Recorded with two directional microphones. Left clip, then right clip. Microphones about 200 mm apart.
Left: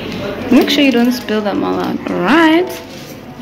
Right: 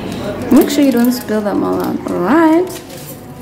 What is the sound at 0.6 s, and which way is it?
Speech, 20° right (ahead or behind).